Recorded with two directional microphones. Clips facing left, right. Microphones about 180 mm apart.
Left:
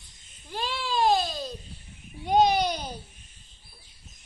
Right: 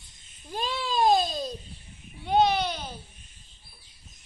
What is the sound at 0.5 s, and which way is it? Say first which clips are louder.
Baby cry: right 1 dB; 20° right (ahead or behind).